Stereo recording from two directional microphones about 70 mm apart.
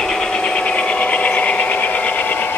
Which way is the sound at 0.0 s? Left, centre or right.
Centre.